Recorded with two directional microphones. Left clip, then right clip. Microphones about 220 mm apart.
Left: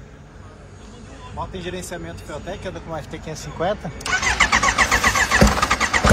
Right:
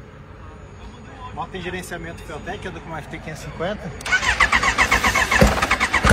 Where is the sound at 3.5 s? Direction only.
40° left (ahead or behind).